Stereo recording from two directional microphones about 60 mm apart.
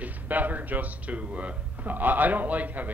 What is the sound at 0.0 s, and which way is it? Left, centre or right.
Speech, right.